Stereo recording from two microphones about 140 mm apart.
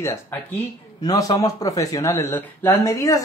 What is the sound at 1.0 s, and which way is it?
Speech, 25° left (ahead or behind).